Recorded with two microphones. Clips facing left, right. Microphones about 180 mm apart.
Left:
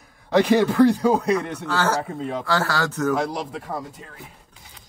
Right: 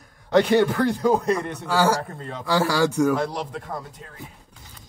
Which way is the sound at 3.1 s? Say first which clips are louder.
Left 1 dB; 5° left (ahead or behind).